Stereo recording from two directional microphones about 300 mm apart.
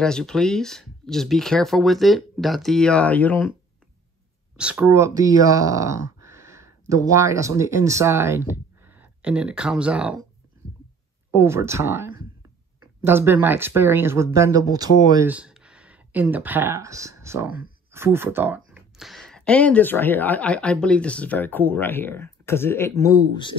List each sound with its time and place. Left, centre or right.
0.0 s speech: centre
4.6 s speech: centre
11.3 s speech: centre